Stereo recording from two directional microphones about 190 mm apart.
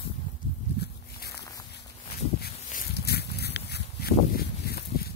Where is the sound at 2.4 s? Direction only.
50° left (ahead or behind).